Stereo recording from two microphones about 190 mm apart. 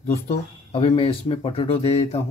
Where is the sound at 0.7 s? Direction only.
30° left (ahead or behind).